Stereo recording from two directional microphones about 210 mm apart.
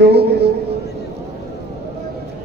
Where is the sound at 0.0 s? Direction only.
50° right (ahead or behind).